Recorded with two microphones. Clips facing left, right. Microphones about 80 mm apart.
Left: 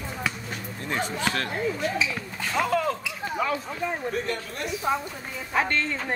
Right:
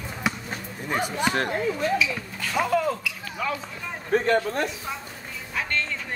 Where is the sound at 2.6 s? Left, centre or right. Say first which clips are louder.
Right 1 dB; centre.